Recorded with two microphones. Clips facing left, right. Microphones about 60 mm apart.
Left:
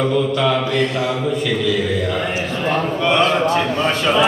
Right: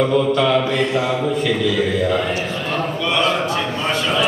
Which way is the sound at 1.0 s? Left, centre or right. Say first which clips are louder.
Right 1 dB; centre.